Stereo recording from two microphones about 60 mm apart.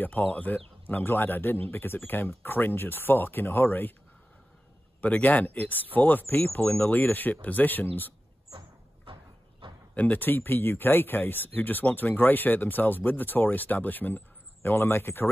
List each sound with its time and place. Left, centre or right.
0.0 s speech: left
5.0 s speech: left
9.9 s speech: left